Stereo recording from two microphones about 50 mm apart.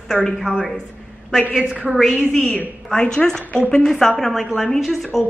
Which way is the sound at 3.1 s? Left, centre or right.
Centre.